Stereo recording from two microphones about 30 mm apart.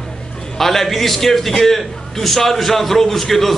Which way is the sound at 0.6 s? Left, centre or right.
Centre.